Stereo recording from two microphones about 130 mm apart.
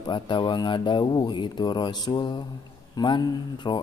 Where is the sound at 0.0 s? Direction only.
35° left (ahead or behind).